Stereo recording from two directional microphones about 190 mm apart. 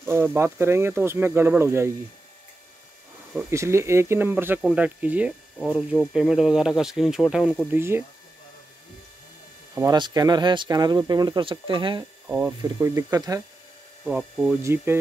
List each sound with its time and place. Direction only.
0.0 s speech: 10° right (ahead or behind)
3.4 s speech: 15° right (ahead or behind)
9.8 s speech: 20° right (ahead or behind)
12.3 s speech: 10° right (ahead or behind)